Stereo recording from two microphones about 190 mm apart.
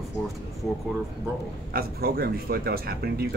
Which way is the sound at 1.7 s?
55° right (ahead or behind).